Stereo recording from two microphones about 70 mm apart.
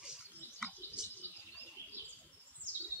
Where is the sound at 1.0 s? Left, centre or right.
Centre.